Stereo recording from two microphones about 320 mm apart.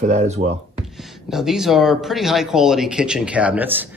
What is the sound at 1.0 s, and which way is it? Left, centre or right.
A man's voice, centre.